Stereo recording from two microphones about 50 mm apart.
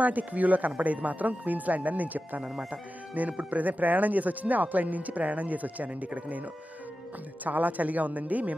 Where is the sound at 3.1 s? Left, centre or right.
Right.